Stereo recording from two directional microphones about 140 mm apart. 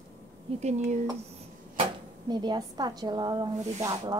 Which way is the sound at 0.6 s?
50° right (ahead or behind).